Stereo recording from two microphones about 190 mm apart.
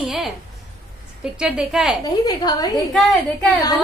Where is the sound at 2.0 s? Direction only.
20° left (ahead or behind).